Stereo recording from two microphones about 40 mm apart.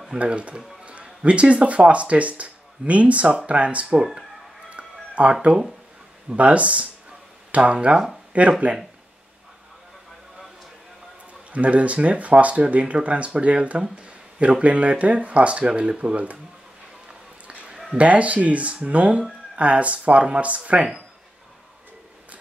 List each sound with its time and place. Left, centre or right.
0.2 s speech: right
4.6 s music: right
5.3 s speech: right
7.1 s a sound: right
8.3 s speech: right
11.5 s speech: right
17.9 s speech: right